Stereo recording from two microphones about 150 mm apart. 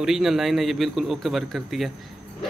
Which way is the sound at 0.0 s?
5° right (ahead or behind).